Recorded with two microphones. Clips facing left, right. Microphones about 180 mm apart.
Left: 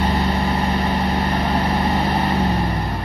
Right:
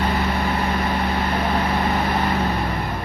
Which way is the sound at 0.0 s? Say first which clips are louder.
Left 2 dB; 35° left (ahead or behind).